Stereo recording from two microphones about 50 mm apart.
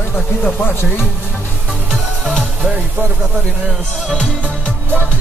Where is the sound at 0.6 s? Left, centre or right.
Left.